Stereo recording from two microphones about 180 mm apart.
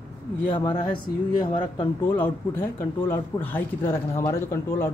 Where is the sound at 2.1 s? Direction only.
10° left (ahead or behind).